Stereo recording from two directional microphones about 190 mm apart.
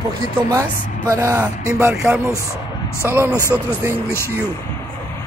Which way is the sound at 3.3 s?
10° left (ahead or behind).